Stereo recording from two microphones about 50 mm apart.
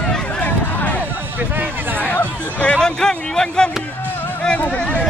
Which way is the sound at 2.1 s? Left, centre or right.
Left.